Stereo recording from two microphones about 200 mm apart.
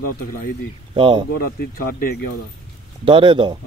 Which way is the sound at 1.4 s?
45° left (ahead or behind).